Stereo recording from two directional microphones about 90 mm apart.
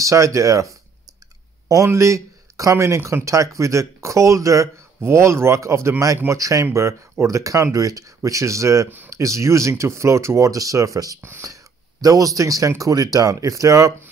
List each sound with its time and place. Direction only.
0.0 s speech: 35° right (ahead or behind)
11.1 s speech: 25° right (ahead or behind)
11.4 s speech: 40° right (ahead or behind)